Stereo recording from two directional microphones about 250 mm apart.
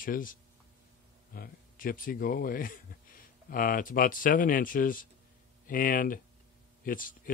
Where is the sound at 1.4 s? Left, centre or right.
Left.